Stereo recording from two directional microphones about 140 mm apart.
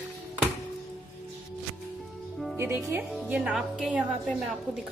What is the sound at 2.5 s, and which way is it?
A woman's voice, 20° right (ahead or behind).